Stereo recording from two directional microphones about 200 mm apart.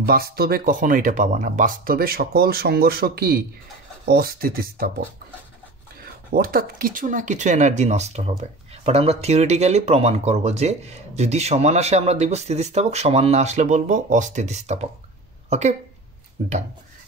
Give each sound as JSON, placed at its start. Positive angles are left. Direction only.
{"t": 0.0, "sound": "speech", "side_deg": -50}
{"t": 6.3, "sound": "speech", "side_deg": -45}
{"t": 16.4, "sound": "speech", "side_deg": -35}